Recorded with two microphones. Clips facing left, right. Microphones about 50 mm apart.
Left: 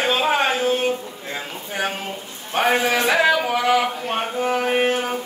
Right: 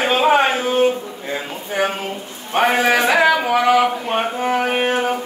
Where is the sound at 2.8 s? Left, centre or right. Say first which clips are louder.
Right 4 dB; right.